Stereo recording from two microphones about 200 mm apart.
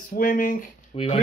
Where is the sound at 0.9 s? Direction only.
30° left (ahead or behind).